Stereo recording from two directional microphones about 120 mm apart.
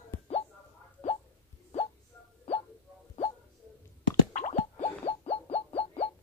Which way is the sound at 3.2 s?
70° left (ahead or behind).